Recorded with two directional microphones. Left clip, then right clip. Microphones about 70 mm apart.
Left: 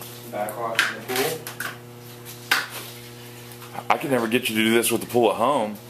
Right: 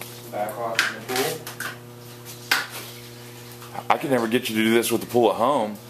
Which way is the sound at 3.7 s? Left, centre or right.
Centre.